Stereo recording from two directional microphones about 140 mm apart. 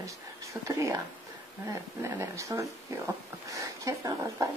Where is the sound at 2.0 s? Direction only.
20° right (ahead or behind).